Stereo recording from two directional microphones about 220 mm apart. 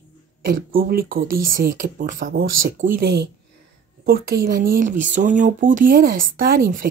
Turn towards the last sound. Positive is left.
turn(degrees=-40)  # may be behind; listen again after turning